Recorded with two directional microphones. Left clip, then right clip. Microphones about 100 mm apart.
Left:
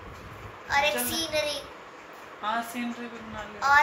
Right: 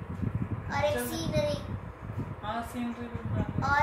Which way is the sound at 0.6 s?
15° right (ahead or behind).